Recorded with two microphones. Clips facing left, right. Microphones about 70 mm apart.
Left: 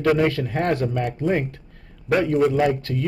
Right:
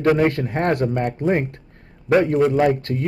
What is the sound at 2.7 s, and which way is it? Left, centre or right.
Speech, right.